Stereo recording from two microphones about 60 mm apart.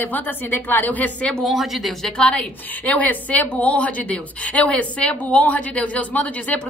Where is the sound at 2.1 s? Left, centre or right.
Centre.